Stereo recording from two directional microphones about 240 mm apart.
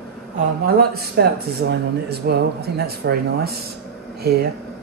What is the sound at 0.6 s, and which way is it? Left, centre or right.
Speech, right.